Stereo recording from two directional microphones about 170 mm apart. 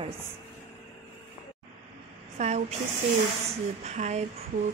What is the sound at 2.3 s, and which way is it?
Speech, 40° right (ahead or behind).